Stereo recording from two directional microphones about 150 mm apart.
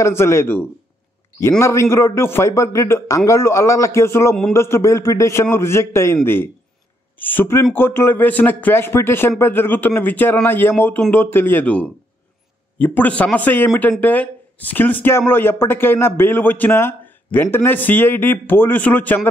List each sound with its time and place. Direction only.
0.0 s a man's voice: 20° left (ahead or behind)